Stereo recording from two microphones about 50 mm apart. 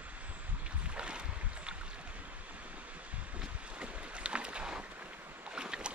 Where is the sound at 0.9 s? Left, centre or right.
Right.